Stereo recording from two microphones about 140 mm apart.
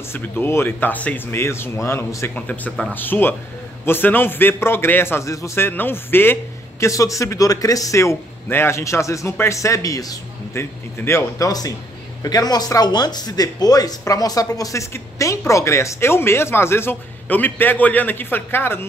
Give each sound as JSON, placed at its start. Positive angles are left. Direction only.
{"t": 0.1, "sound": "speech", "side_deg": 15}